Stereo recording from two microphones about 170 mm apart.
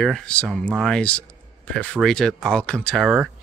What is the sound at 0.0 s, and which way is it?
Speech, 5° left (ahead or behind).